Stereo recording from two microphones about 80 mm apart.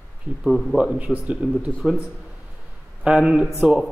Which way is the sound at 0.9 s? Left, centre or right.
Centre.